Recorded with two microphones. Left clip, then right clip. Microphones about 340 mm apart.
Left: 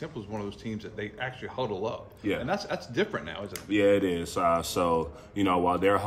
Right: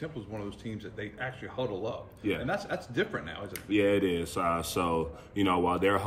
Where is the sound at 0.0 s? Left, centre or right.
Left.